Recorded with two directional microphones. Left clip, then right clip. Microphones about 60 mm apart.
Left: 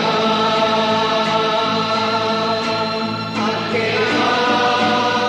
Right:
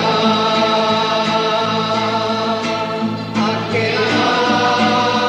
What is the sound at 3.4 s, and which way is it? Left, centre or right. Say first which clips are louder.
Music: right 2 dB; right.